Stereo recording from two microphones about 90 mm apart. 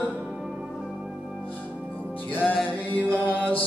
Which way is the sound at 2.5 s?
20° left (ahead or behind).